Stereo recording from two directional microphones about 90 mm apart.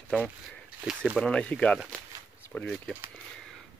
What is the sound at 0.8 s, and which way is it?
Speech, 5° right (ahead or behind).